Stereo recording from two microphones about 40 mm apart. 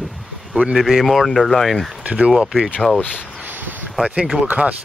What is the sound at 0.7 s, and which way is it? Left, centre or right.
Speech, centre.